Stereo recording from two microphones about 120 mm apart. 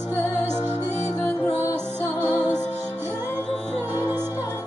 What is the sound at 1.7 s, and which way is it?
Music, 15° right (ahead or behind).